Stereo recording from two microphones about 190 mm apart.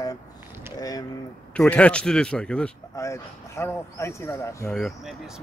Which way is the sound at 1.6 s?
5° left (ahead or behind).